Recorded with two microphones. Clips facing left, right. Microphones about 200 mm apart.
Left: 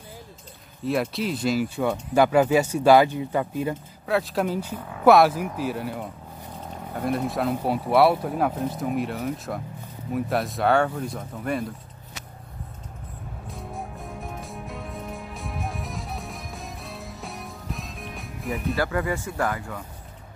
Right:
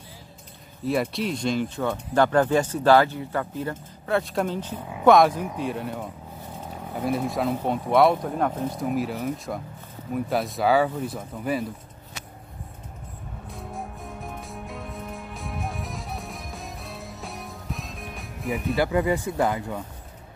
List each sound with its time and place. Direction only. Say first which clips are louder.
1.1 s speech: left 1 dB; 5° left (ahead or behind)
4.0 s speech: even; centre (ahead or behind)
4.7 s speech: right 1 dB; 15° right (ahead or behind)
5.0 s speech: even; 5° left (ahead or behind)
13.5 s music: even; centre (ahead or behind)
18.8 s speech: right 6 dB; 20° right (ahead or behind)